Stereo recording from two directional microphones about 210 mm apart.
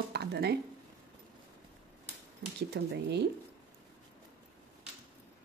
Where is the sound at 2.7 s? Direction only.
55° right (ahead or behind).